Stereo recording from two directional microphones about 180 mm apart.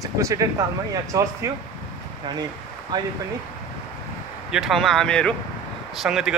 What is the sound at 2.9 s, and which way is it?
Speech, 20° right (ahead or behind).